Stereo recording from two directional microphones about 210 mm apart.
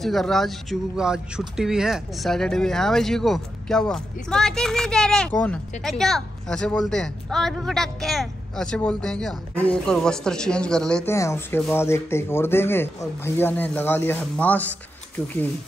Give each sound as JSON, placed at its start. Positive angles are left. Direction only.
{"t": 0.0, "sound": "speech", "side_deg": 0}